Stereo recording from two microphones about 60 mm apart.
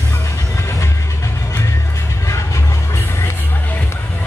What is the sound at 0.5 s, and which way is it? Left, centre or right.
Music, left.